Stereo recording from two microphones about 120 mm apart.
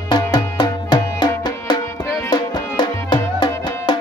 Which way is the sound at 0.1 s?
40° left (ahead or behind).